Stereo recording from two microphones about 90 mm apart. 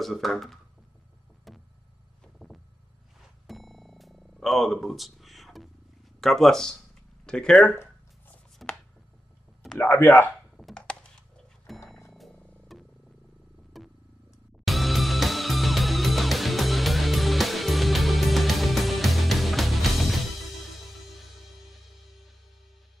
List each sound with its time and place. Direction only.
0.0 s speech: centre (ahead or behind)
2.2 s a sound: centre (ahead or behind)
3.4 s music: centre (ahead or behind)
6.2 s speech: centre (ahead or behind)
7.7 s a sound: 20° left (ahead or behind)
8.6 s chopping: centre (ahead or behind)
9.8 s speech: 25° left (ahead or behind)
10.6 s a sound: 10° left (ahead or behind)
11.7 s music: centre (ahead or behind)
13.7 s purr: centre (ahead or behind)
14.6 s music: centre (ahead or behind)